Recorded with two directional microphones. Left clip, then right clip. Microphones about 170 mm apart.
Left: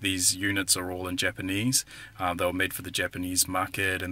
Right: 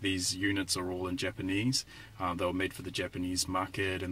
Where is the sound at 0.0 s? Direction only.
20° left (ahead or behind).